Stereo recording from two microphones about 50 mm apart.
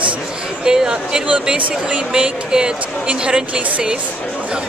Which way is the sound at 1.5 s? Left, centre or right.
Centre.